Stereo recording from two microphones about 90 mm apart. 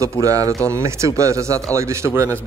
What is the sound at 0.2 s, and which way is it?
Speech, 40° right (ahead or behind).